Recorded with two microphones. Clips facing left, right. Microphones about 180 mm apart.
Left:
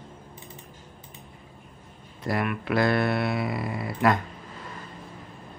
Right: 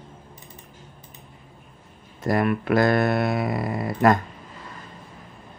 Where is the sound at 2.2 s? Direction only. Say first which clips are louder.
Right 6 dB; 45° right (ahead or behind).